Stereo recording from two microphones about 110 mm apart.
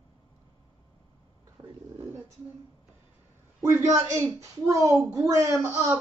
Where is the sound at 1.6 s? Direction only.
45° right (ahead or behind).